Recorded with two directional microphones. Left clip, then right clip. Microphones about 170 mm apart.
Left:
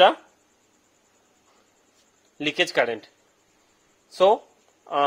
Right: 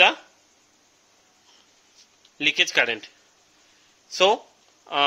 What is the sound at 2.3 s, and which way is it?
Speech, 35° left (ahead or behind).